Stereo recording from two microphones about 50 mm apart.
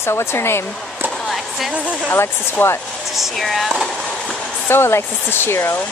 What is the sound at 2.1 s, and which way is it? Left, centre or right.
Speech, left.